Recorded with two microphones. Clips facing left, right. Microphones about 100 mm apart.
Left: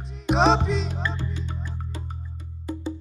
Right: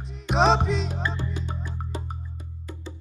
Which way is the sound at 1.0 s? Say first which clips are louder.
Even; 20° right (ahead or behind).